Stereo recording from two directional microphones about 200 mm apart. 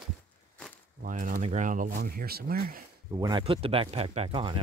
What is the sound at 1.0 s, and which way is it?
Speech, 40° right (ahead or behind).